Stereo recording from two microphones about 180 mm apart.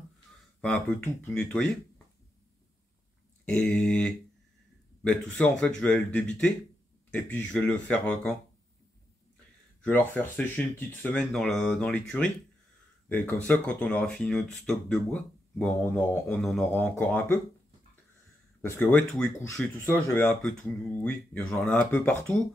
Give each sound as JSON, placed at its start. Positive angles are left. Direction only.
{"t": 0.6, "sound": "speech", "side_deg": 5}
{"t": 3.4, "sound": "speech", "side_deg": 5}
{"t": 9.8, "sound": "speech", "side_deg": 10}
{"t": 18.6, "sound": "speech", "side_deg": 10}